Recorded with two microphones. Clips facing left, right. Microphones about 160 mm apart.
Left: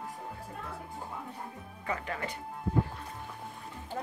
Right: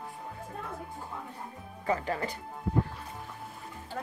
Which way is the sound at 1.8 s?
35° right (ahead or behind).